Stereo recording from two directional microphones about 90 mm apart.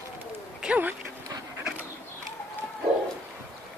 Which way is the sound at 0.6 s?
15° right (ahead or behind).